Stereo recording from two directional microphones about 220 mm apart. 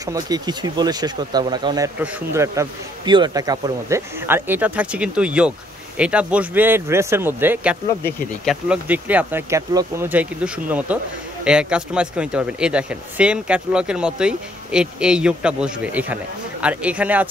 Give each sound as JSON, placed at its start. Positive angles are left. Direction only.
{"t": 0.0, "sound": "a man's voice", "side_deg": -15}